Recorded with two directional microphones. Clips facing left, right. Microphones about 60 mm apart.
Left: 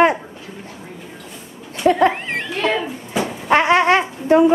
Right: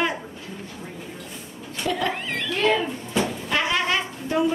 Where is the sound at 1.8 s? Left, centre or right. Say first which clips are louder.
Left 10 dB; left.